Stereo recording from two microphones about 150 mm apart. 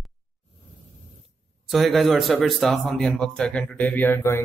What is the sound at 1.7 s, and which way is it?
Speech, centre (ahead or behind).